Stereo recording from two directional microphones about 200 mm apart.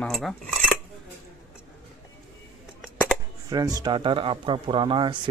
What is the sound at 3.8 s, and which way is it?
A man's voice, 25° right (ahead or behind).